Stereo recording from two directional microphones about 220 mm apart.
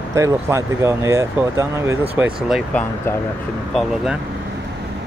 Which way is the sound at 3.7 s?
Centre (ahead or behind).